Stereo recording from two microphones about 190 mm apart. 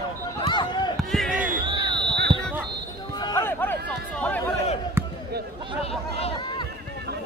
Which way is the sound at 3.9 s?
5° left (ahead or behind).